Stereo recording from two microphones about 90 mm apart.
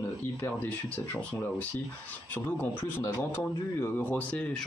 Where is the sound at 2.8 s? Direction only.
25° left (ahead or behind).